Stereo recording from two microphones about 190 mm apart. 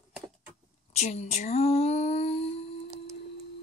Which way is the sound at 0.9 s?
35° left (ahead or behind).